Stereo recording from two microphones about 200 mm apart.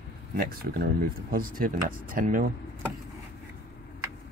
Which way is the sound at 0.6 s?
50° right (ahead or behind).